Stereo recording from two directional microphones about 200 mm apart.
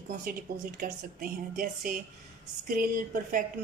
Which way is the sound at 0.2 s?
45° right (ahead or behind).